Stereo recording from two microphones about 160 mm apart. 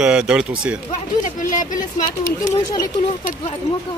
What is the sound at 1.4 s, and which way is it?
Speech, 55° left (ahead or behind).